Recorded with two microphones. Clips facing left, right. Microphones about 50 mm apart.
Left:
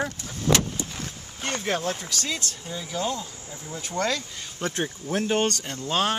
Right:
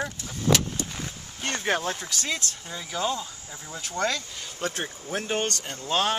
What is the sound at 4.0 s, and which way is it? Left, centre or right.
Speech, right.